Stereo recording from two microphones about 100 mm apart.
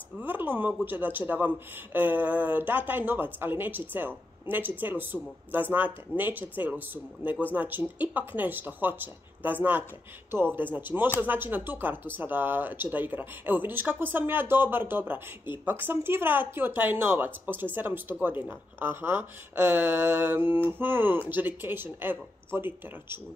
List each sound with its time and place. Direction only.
0.2 s speech: 20° right (ahead or behind)